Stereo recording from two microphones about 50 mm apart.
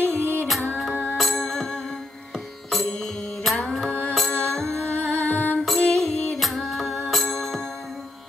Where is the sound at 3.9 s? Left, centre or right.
Left.